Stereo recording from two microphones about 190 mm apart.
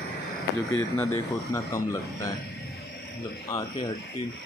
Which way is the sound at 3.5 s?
20° left (ahead or behind).